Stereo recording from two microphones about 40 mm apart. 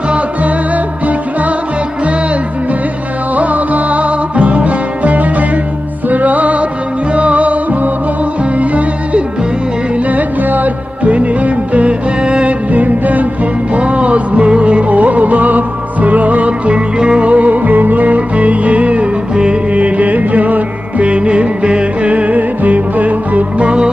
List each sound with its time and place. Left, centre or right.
3.3 s music: right
12.7 s music: right
13.7 s music: right
19.3 s music: right
19.7 s music: right
22.1 s music: right